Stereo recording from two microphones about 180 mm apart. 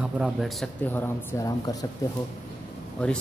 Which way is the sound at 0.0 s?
5° right (ahead or behind).